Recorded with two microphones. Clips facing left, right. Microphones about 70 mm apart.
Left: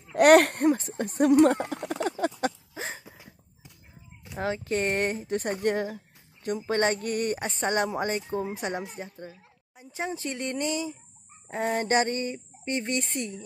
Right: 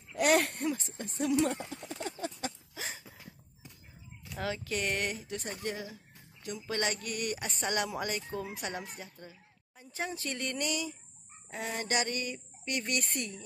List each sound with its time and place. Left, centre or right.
0.1 s speech: left
0.7 s speech: left
2.7 s a sound: left
4.2 s speech: left